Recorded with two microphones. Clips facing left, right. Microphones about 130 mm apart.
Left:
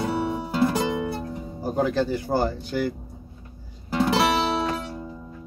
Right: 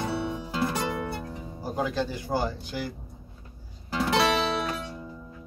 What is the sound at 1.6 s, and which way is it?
Speech, 45° left (ahead or behind).